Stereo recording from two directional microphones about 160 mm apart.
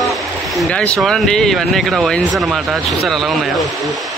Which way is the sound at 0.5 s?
5° left (ahead or behind).